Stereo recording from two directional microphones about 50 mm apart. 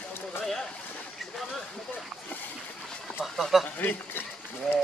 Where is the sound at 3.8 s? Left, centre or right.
Left.